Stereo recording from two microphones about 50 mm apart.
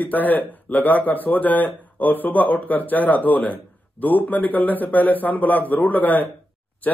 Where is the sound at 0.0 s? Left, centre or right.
Left.